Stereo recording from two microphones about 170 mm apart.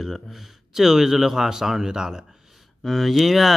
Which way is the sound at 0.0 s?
Centre (ahead or behind).